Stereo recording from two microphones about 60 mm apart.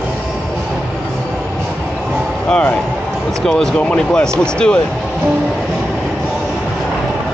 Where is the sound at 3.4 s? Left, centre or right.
Centre.